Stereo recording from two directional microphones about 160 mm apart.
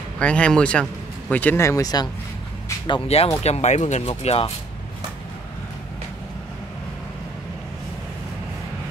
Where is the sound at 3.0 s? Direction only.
40° left (ahead or behind).